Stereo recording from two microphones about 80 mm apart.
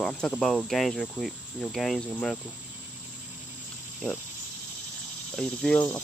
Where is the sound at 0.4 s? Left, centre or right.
Centre.